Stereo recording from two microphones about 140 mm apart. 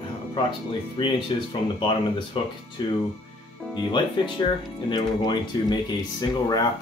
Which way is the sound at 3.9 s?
35° left (ahead or behind).